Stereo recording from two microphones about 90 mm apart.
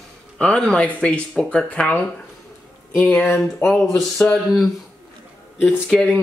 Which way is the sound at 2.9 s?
20° left (ahead or behind).